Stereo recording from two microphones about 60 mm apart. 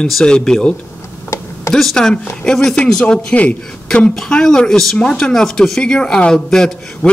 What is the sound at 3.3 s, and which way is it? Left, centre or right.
Speech, left.